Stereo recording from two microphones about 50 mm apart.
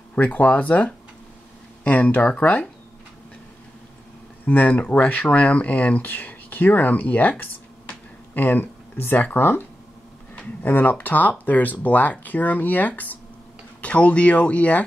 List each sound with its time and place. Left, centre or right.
0.1 s speech: left
4.5 s speech: left